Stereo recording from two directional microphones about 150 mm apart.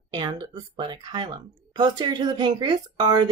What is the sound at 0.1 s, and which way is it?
Speech, 30° right (ahead or behind).